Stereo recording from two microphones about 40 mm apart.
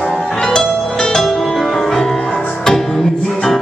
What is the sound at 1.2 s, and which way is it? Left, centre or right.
Music, centre.